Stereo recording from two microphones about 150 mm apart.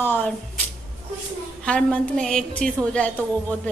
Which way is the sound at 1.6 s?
5° left (ahead or behind).